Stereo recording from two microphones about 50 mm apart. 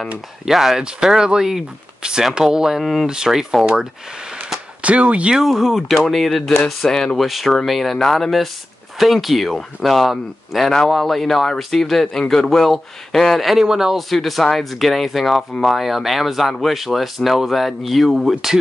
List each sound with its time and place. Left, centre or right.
0.5 s speech: centre
2.8 s speech: centre
3.1 s speech: centre
4.8 s speech: right
5.3 s speech: centre
6.8 s speech: centre
7.2 s speech: centre
13.9 s speech: centre